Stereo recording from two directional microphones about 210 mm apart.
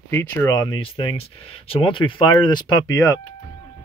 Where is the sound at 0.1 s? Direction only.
10° left (ahead or behind).